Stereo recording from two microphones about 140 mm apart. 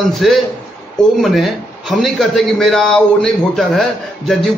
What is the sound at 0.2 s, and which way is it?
A man's voice, centre (ahead or behind).